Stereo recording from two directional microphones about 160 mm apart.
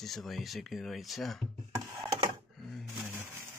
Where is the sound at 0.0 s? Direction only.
Centre (ahead or behind).